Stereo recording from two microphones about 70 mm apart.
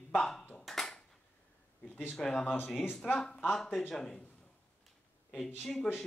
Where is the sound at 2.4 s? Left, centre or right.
Left.